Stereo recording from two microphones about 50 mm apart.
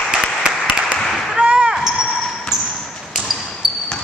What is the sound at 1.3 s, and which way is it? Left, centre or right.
Basketball bounce, right.